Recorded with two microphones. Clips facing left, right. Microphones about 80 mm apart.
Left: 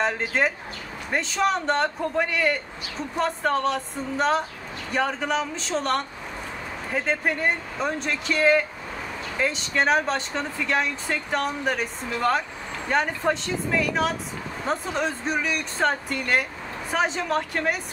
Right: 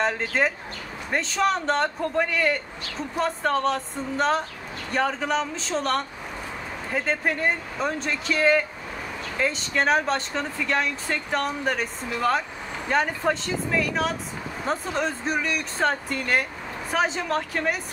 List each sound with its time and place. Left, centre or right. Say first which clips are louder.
0.0 s speech: even; centre